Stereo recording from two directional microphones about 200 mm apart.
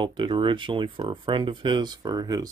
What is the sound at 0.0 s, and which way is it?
Speech, 25° right (ahead or behind).